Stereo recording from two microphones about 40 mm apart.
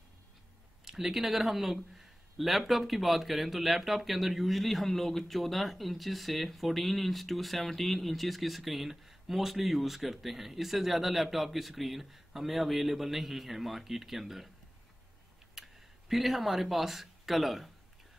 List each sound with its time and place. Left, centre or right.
0.8 s speech: centre
15.5 s speech: centre